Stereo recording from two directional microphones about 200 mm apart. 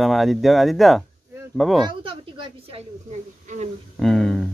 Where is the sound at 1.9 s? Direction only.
25° right (ahead or behind).